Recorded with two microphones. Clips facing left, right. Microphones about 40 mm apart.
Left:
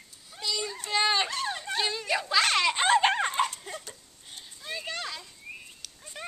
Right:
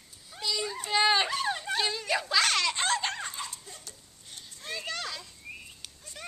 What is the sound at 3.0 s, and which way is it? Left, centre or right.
Dog, left.